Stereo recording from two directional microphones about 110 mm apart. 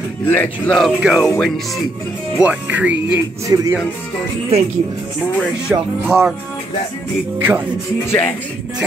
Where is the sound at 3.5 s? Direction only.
30° right (ahead or behind).